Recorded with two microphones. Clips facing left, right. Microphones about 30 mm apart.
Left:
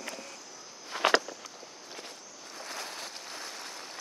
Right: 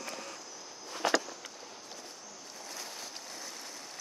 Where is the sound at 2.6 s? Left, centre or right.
Left.